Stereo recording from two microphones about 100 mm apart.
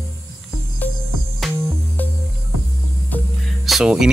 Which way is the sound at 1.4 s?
Centre (ahead or behind).